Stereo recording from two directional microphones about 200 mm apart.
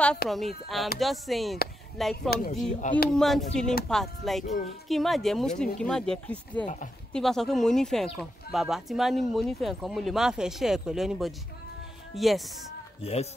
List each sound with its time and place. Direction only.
0.3 s speech: centre (ahead or behind)
2.3 s speech: 50° left (ahead or behind)
3.1 s speech: centre (ahead or behind)
13.0 s speech: 30° left (ahead or behind)